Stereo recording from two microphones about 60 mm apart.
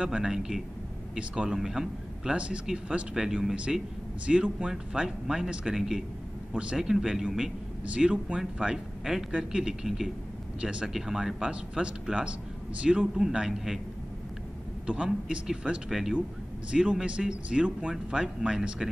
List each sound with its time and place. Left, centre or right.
0.0 s speech: centre
2.3 s speech: centre
6.8 s speech: centre
7.8 s speech: centre
10.6 s speech: centre
10.9 s speech: centre
14.9 s speech: centre
15.9 s speech: centre